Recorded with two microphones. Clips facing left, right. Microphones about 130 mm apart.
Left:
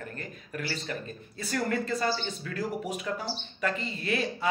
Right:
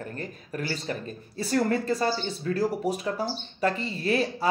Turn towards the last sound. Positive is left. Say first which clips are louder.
# right 5 dB
turn(degrees=-35)  # may be behind; listen again after turning